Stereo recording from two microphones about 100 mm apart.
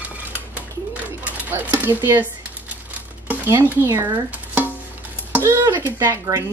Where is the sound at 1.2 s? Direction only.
20° right (ahead or behind).